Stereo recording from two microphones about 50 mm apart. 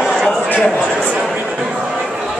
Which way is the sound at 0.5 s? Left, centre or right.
Left.